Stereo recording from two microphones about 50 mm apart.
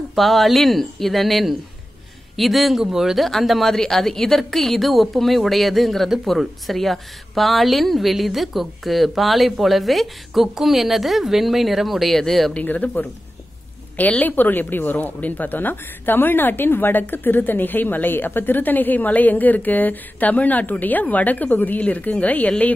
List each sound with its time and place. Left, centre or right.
0.1 s speech: centre
3.3 s speech: centre
12.6 s speech: left
14.2 s speech: left